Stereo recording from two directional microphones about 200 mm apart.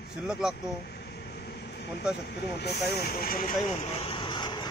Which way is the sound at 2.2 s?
55° left (ahead or behind).